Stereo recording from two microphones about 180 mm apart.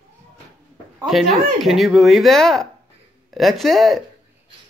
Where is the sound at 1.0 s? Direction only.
Centre (ahead or behind).